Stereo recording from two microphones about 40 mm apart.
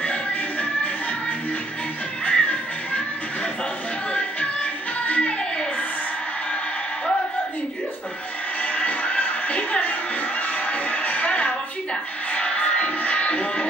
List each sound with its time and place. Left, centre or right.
0.0 s music: left
2.2 s music: left
4.1 s music: left
8.6 s music: left
10.4 s a sound: left